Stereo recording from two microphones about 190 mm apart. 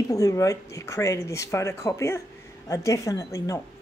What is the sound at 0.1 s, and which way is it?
Speech, 15° left (ahead or behind).